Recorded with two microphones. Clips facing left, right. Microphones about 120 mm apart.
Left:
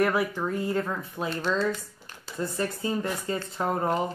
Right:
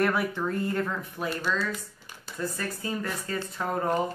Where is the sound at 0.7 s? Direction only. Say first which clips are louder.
Left 1 dB; 20° left (ahead or behind).